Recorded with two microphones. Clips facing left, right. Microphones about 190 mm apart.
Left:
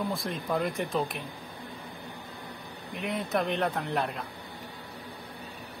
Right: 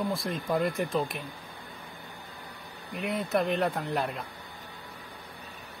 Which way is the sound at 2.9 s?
Centre (ahead or behind).